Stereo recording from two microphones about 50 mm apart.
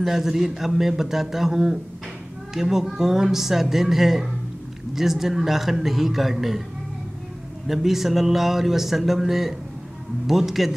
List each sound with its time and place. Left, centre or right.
0.0 s speech: centre
7.6 s speech: centre